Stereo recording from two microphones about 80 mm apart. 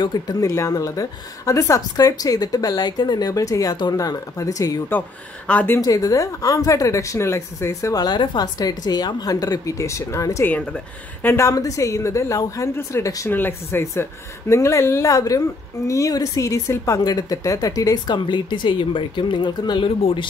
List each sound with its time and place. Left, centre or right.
0.0 s a woman's voice: left
0.5 s a woman's voice: left
7.9 s a woman's voice: left
8.5 s a woman's voice: left
13.3 s a woman's voice: left
17.0 s a woman's voice: left
18.1 s speech: left